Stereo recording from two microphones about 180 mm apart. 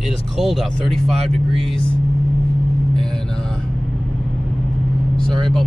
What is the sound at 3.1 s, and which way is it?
Music, 5° left (ahead or behind).